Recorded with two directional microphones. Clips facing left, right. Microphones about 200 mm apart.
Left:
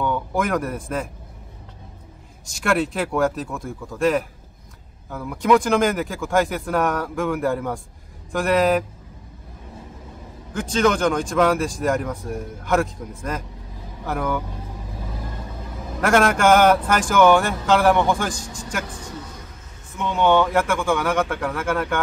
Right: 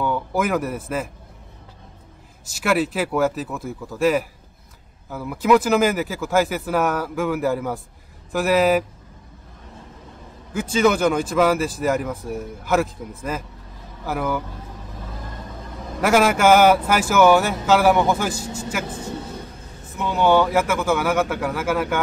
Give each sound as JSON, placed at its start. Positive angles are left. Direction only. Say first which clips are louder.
{"t": 0.0, "sound": "speech", "louder": "right 1 dB", "side_deg": -5}
{"t": 2.4, "sound": "speech", "louder": "right 1 dB", "side_deg": -5}
{"t": 10.5, "sound": "speech", "louder": "right 1 dB", "side_deg": -5}
{"t": 16.0, "sound": "speech", "louder": "right 1 dB", "side_deg": -5}
{"t": 18.9, "sound": "a sound", "louder": "right 5 dB", "side_deg": -25}
{"t": 20.0, "sound": "speech", "louder": "right 1 dB", "side_deg": -5}